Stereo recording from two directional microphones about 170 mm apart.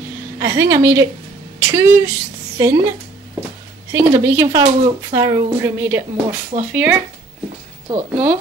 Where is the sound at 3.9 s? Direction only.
15° right (ahead or behind).